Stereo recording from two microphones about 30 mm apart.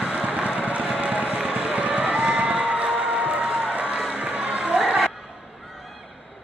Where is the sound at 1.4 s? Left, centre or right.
Right.